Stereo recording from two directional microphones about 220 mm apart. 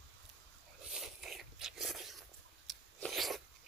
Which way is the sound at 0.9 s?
Centre (ahead or behind).